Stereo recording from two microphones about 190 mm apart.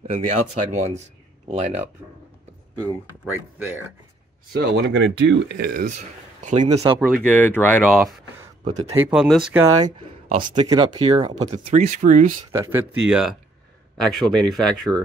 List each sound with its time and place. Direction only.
0.0 s speech: 35° right (ahead or behind)
2.8 s speech: 10° right (ahead or behind)
4.5 s speech: 60° right (ahead or behind)
6.4 s speech: 40° right (ahead or behind)
7.1 s speech: 5° left (ahead or behind)
8.9 s speech: 5° right (ahead or behind)
9.8 s speech: 30° right (ahead or behind)
12.5 s speech: 10° right (ahead or behind)